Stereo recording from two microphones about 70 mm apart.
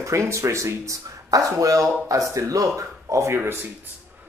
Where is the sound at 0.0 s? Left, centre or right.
Right.